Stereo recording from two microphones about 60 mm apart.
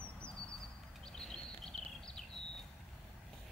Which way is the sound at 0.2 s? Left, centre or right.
Centre.